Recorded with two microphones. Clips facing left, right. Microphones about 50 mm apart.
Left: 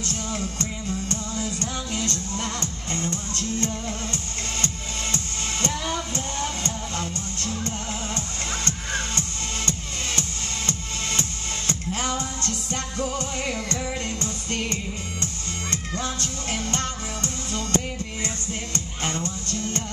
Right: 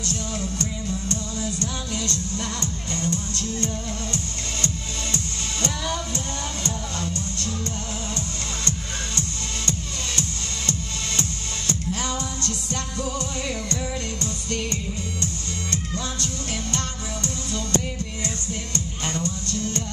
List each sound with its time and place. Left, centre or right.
1.1 s music: left
10.7 s music: left